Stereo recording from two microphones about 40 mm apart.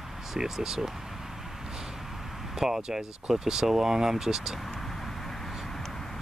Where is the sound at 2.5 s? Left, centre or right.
Centre.